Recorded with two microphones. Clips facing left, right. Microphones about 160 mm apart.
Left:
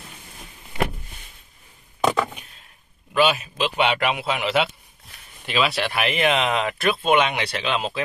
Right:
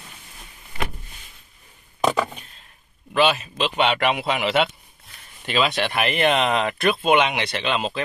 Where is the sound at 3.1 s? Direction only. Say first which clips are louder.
Even; 10° left (ahead or behind).